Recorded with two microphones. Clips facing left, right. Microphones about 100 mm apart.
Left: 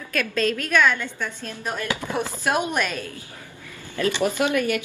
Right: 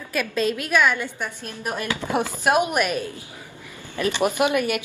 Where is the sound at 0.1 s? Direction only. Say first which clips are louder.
Even; 10° right (ahead or behind).